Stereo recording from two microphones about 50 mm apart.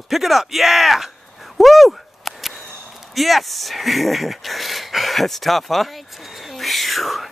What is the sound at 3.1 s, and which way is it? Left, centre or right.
Speech, centre.